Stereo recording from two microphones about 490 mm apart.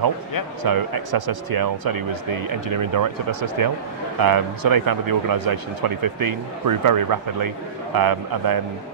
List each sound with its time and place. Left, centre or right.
0.7 s speech: right